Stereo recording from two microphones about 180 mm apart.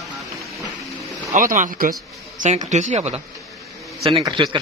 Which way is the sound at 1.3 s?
45° right (ahead or behind).